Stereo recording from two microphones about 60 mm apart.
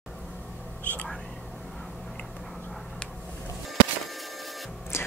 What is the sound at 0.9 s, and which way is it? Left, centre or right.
Whispering, left.